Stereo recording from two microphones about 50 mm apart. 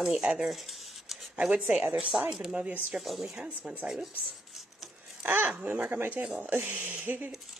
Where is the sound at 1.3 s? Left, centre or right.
Right.